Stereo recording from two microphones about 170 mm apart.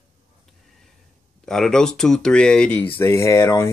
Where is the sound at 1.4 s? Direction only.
5° left (ahead or behind).